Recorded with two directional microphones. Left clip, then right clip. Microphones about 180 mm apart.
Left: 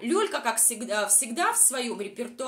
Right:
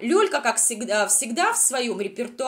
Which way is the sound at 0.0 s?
20° right (ahead or behind).